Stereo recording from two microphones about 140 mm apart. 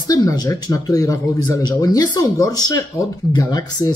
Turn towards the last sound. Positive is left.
turn(degrees=25)  # may be behind; listen again after turning